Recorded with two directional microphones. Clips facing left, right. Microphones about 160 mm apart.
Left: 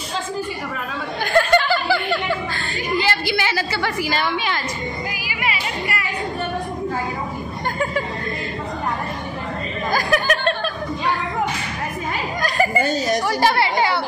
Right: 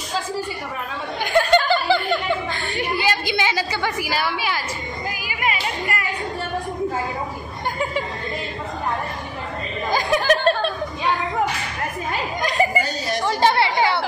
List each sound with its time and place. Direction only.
1.2 s a sound: 15° right (ahead or behind)
1.7 s snicker: 20° right (ahead or behind)
3.0 s a woman's voice: 15° right (ahead or behind)
5.2 s music: 45° right (ahead or behind)
9.8 s chuckle: 20° right (ahead or behind)
10.2 s chuckle: 30° right (ahead or behind)
12.4 s a sound: 20° right (ahead or behind)
13.3 s chatter: 20° right (ahead or behind)